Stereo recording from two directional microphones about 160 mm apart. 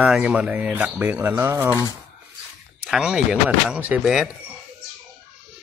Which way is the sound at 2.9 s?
5° right (ahead or behind).